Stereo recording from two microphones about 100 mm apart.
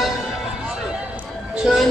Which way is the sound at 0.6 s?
5° right (ahead or behind).